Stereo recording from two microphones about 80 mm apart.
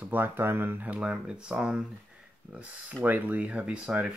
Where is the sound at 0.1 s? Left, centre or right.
Right.